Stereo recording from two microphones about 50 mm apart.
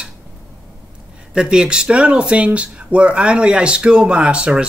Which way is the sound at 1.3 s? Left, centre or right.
Centre.